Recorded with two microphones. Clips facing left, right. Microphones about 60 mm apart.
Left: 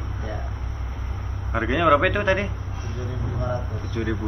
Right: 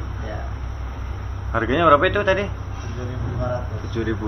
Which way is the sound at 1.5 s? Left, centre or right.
Right.